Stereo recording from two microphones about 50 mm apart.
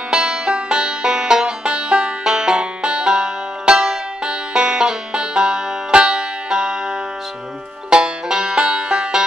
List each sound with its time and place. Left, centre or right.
0.1 s music: centre